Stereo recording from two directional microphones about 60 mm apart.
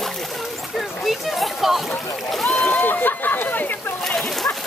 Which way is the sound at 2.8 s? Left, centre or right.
Left.